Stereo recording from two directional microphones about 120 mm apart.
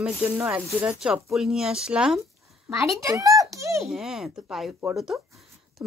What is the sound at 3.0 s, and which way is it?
Speech, 25° right (ahead or behind).